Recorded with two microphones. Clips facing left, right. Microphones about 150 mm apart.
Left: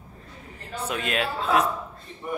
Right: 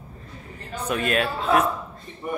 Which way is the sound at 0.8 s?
15° left (ahead or behind).